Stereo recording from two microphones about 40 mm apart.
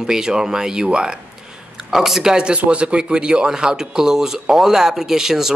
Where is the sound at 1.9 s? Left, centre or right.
Centre.